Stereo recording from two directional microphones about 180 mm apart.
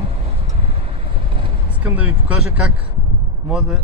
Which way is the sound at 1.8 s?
10° right (ahead or behind).